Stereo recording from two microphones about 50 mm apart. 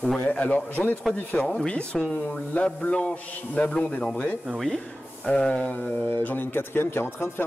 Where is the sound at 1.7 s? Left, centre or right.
Centre.